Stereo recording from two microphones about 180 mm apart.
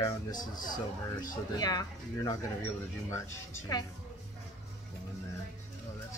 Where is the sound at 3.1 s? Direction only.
20° left (ahead or behind).